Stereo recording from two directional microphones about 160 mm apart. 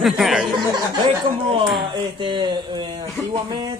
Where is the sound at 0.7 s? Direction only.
30° right (ahead or behind).